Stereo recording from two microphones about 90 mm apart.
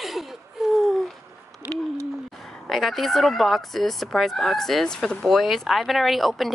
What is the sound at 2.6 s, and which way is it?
Speech, centre (ahead or behind).